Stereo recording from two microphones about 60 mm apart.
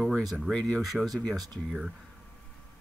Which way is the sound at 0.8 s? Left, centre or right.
Centre.